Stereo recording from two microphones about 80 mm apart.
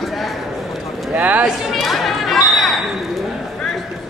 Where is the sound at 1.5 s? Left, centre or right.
Centre.